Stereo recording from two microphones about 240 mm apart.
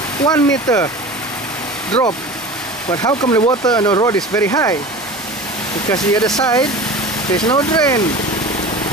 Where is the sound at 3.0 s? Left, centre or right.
Centre.